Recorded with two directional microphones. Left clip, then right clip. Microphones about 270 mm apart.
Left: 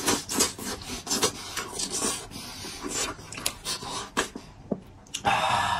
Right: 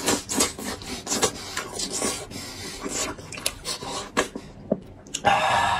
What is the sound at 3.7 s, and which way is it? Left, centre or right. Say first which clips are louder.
Dog: right 2 dB; centre.